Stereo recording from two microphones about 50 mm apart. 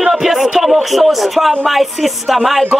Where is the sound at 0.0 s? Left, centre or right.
Centre.